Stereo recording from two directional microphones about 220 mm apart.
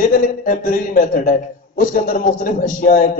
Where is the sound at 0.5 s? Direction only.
40° left (ahead or behind).